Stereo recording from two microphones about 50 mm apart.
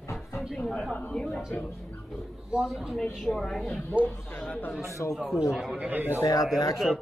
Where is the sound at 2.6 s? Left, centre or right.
Centre.